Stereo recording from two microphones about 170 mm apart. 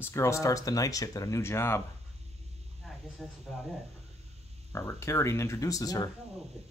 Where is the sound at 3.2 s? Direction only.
Centre (ahead or behind).